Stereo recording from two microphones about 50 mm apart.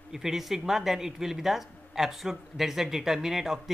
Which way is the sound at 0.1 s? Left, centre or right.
Centre.